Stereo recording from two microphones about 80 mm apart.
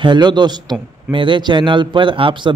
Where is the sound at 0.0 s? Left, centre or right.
Right.